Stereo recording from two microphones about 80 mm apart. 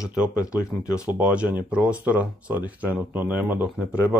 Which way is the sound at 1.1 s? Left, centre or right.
Centre.